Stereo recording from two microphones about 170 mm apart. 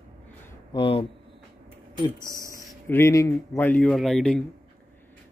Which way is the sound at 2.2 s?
20° right (ahead or behind).